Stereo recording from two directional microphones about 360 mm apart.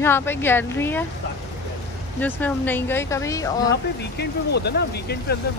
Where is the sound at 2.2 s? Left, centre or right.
Centre.